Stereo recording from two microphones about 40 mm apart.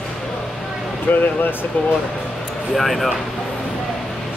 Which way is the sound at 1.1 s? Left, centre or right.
Left.